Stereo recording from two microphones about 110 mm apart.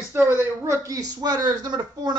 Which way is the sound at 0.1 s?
20° right (ahead or behind).